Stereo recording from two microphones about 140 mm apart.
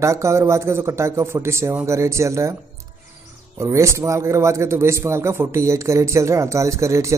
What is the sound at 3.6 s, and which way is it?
A man's voice, 20° right (ahead or behind).